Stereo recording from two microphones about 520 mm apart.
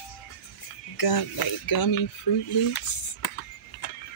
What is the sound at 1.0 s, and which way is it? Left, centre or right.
Speech, left.